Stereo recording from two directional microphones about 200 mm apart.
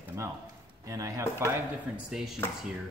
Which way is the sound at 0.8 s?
15° right (ahead or behind).